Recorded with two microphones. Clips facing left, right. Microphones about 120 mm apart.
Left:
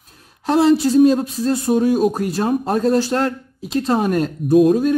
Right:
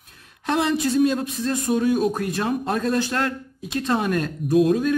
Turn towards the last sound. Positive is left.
turn(degrees=35)  # may be behind; listen again after turning